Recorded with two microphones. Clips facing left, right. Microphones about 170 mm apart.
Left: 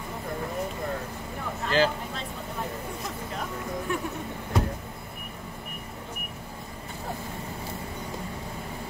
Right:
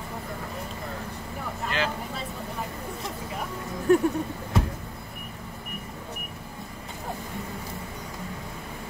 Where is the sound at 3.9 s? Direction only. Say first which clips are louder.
Right 13 dB; 40° right (ahead or behind).